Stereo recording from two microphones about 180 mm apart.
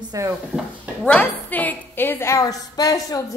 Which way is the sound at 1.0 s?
10° left (ahead or behind).